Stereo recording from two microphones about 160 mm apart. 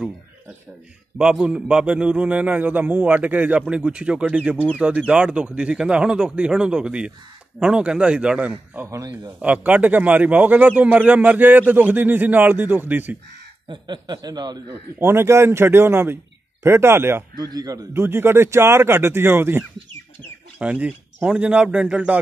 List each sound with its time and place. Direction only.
1.1 s a man's voice: 5° right (ahead or behind); by 9.3 s 20° right (ahead or behind)
9.4 s a man's voice: 10° right (ahead or behind)
13.7 s speech: 30° right (ahead or behind)
15.0 s a man's voice: 15° right (ahead or behind)
17.4 s a man's voice: 25° right (ahead or behind); by 22.2 s 10° right (ahead or behind)